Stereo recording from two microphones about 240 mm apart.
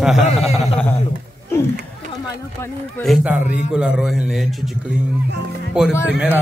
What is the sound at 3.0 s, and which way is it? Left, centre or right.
A man's voice, centre.